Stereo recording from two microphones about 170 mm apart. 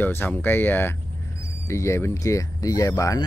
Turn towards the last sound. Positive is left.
turn(degrees=20)  # may be behind; listen again after turning